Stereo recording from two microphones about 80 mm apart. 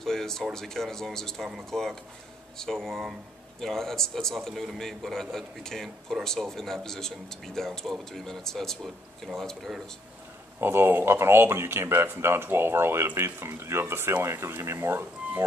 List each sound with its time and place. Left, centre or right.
0.0 s speech: centre
10.6 s speech: right